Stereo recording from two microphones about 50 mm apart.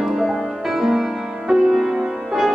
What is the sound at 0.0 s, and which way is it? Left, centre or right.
Music, centre.